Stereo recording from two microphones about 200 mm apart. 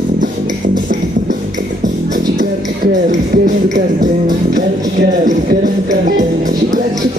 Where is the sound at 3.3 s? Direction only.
40° right (ahead or behind).